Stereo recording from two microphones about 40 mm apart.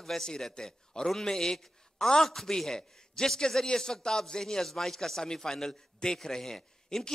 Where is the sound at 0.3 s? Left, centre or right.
Centre.